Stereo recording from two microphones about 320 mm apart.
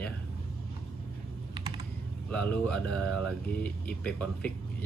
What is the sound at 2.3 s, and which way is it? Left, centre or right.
Speech, centre.